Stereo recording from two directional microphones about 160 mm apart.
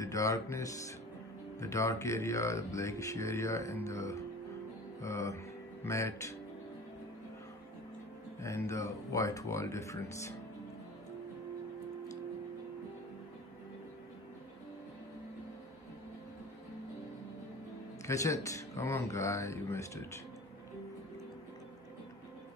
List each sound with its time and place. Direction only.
0.0 s speech: 20° left (ahead or behind)
8.4 s speech: 20° left (ahead or behind)
18.0 s speech: 20° left (ahead or behind)